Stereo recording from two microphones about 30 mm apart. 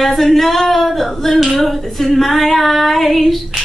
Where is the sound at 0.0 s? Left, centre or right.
Centre.